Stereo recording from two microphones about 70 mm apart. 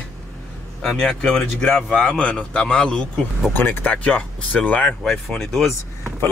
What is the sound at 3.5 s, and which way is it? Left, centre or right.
Speech, left.